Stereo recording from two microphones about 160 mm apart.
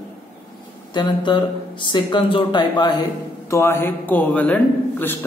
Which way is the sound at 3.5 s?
15° left (ahead or behind).